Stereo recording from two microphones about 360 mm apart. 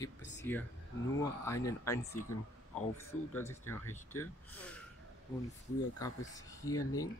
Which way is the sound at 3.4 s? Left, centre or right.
Centre.